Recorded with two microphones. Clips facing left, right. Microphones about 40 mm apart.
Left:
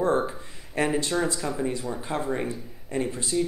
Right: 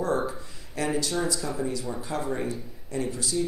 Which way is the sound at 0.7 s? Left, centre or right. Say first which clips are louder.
Left 3 dB; left.